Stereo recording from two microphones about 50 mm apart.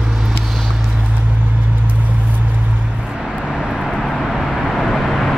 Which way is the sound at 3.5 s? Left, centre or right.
Centre.